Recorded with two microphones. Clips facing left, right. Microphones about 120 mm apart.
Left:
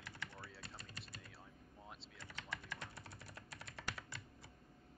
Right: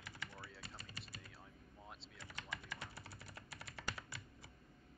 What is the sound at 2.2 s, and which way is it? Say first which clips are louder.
Typing: even; 10° right (ahead or behind).